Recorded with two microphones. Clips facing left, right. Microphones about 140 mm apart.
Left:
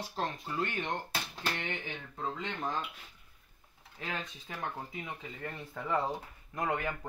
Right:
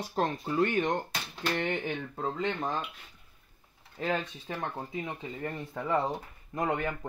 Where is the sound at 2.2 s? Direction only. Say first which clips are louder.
Right 5 dB; 35° right (ahead or behind).